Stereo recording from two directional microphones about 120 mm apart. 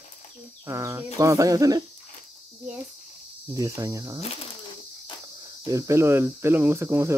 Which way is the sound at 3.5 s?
30° right (ahead or behind).